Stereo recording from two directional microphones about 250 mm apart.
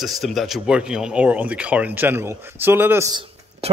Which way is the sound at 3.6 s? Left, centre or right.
Right.